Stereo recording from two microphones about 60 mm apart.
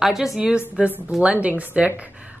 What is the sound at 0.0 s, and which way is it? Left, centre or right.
Speech, centre.